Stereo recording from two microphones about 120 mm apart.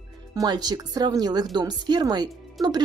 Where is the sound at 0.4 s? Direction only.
35° right (ahead or behind).